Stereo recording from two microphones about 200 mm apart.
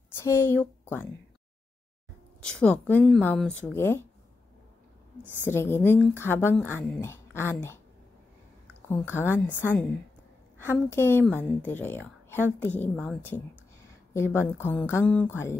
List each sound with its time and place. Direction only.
0.2 s speech: 15° left (ahead or behind)
2.4 s speech: 5° left (ahead or behind)
5.4 s speech: 10° left (ahead or behind)
8.8 s speech: 10° left (ahead or behind)